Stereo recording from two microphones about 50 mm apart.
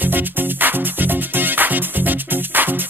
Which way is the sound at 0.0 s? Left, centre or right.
Right.